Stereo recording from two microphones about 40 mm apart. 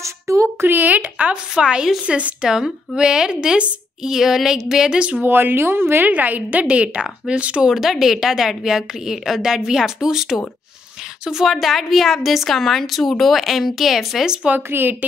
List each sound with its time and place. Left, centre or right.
0.7 s a woman's voice: right
1.6 s speech: right
2.4 s a woman's voice: centre
4.0 s a woman's voice: centre
5.2 s speech: right
6.0 s a woman's voice: right
6.6 s speech: right
7.6 s a woman's voice: centre
11.5 s speech: centre
14.7 s speech: right